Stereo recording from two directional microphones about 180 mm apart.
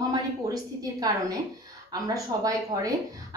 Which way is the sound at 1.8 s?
20° right (ahead or behind).